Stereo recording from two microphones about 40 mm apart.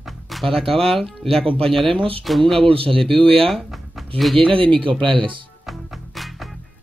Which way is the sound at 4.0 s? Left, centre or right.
Centre.